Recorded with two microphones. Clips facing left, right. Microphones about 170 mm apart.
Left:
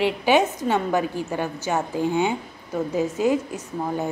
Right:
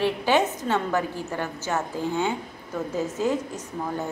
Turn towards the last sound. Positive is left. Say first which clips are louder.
# left 3 dB
turn(degrees=10)  # may be behind; listen again after turning